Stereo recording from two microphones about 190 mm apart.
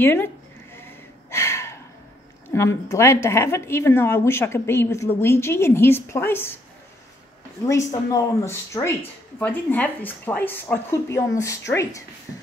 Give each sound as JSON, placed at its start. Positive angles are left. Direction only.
{"t": 0.0, "sound": "speech", "side_deg": 10}
{"t": 0.7, "sound": "a sound", "side_deg": 15}
{"t": 2.5, "sound": "speech", "side_deg": 15}
{"t": 7.9, "sound": "speech", "side_deg": 15}